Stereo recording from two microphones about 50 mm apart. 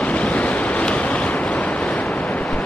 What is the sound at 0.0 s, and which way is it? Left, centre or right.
Waves, left.